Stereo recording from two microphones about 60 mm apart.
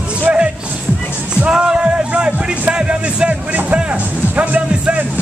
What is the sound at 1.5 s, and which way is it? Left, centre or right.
Speech, centre.